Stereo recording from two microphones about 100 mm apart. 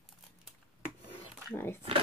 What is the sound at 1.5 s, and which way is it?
Speech, 25° left (ahead or behind).